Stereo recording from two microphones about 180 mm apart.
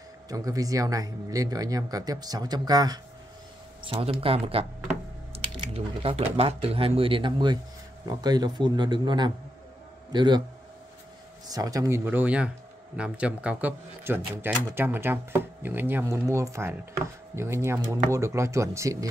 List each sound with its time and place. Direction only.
0.3 s speech: 20° right (ahead or behind)
3.8 s speech: 30° right (ahead or behind)
11.4 s speech: 20° right (ahead or behind)